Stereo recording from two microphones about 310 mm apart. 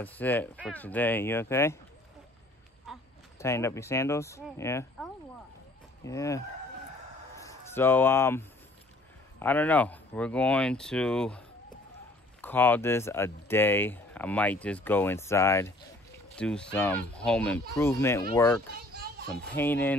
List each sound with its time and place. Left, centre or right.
0.0 s speech: centre
3.3 s speech: centre
18.8 s children playing: right
19.4 s speech: centre